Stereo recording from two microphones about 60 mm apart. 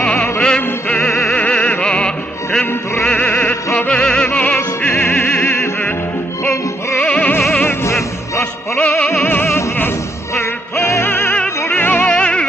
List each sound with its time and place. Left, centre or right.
0.0 s music: centre
3.3 s music: left
3.9 s music: centre
4.6 s opera: left
7.0 s music: centre
7.6 s music: left
8.7 s music: centre
9.2 s music: left
11.3 s music: left
12.1 s music: centre